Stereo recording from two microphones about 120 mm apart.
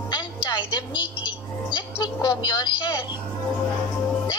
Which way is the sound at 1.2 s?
40° left (ahead or behind).